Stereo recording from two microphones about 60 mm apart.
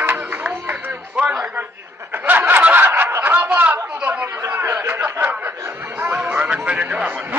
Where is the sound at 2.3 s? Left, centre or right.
Right.